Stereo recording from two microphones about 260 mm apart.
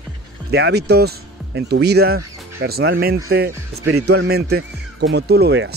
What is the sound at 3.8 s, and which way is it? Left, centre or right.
Speech, right.